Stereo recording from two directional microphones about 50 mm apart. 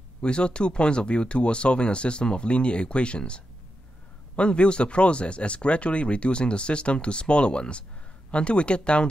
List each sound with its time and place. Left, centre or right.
0.2 s speech: centre